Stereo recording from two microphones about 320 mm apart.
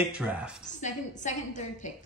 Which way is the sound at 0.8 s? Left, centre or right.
Left.